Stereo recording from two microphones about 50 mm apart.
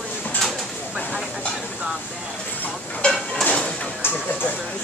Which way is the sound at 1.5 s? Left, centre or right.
Centre.